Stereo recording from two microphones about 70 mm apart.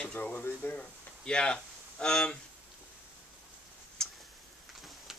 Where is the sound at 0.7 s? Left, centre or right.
Centre.